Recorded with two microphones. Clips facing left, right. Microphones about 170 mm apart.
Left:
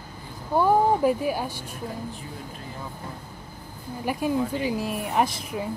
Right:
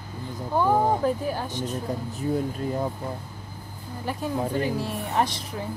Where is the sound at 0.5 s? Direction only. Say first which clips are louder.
Left 2 dB; 10° left (ahead or behind).